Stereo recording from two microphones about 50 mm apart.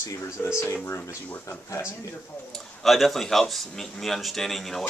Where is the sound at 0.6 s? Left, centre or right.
Left.